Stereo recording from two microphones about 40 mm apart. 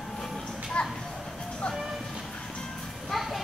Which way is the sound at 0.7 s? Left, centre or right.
Left.